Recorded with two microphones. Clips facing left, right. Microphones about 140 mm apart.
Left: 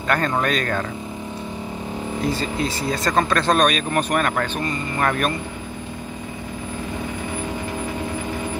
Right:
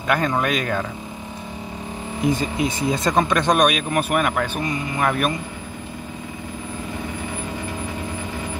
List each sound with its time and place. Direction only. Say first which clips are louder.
0.1 s speech: even; 5° right (ahead or behind)
2.2 s speech: right 4 dB; 15° right (ahead or behind)